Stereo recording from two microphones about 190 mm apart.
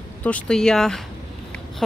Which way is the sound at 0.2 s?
5° left (ahead or behind).